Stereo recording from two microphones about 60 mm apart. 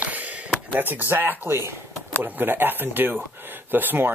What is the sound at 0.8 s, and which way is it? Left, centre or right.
Speech, right.